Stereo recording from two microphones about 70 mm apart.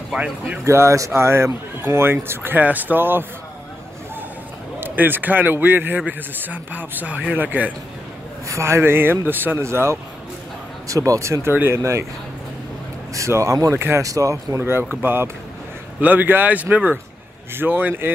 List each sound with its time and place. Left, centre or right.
0.7 s speech: right
4.7 s a man's voice: right
8.5 s speech: right
9.6 s speech: right
10.9 s speech: right
11.5 s speech: right
13.1 s speech: right
14.6 s a man's voice: right